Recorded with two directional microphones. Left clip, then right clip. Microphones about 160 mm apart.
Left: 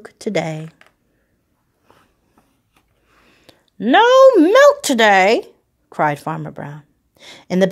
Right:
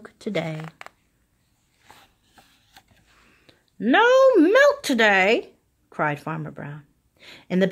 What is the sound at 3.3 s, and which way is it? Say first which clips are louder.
A woman's voice: left 6 dB; 25° left (ahead or behind).